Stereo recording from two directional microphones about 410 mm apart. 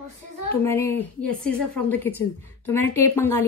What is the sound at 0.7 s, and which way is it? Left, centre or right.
A woman's voice, centre.